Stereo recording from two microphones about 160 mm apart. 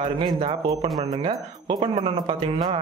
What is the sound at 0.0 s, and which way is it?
Speech, 30° right (ahead or behind).